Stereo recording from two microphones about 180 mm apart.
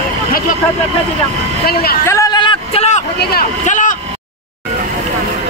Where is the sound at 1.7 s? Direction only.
55° left (ahead or behind).